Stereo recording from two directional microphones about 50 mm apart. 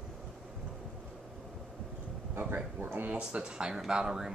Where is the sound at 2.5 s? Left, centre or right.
Right.